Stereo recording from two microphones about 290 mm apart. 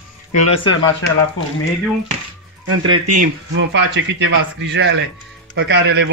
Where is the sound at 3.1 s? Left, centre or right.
Right.